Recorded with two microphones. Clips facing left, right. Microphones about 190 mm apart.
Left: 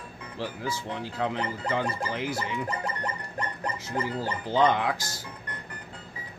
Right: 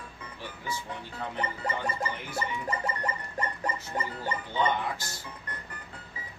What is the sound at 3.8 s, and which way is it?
Speech, 90° left.